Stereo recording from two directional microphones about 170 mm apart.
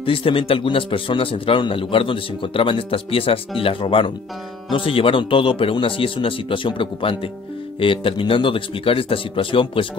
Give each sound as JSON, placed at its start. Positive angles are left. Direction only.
{"t": 0.0, "sound": "a man's voice", "side_deg": 30}